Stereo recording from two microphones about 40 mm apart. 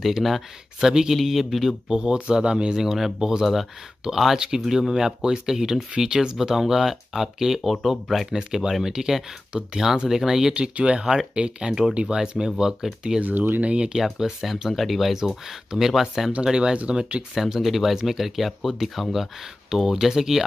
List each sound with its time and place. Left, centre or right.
0.0 s speech: centre
0.7 s speech: centre
1.1 s speech: centre
1.9 s speech: centre
8.3 s speech: centre
9.5 s speech: right
10.0 s speech: centre
10.8 s speech: right
13.2 s speech: right
13.6 s speech: right
14.4 s speech: centre
15.1 s speech: centre
16.4 s speech: centre
17.3 s speech: centre